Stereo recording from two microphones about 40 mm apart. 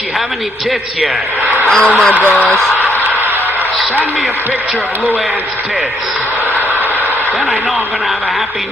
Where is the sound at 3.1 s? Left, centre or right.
Right.